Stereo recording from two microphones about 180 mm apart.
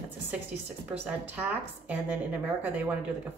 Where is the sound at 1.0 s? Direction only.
10° right (ahead or behind).